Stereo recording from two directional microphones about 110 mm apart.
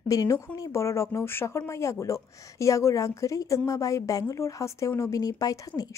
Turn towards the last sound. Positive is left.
turn(degrees=35)  # may be behind; listen again after turning